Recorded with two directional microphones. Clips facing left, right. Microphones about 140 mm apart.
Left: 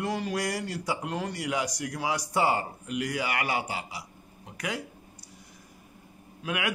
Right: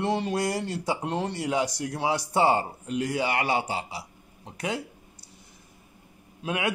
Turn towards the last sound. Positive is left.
turn(degrees=-25)  # may be behind; listen again after turning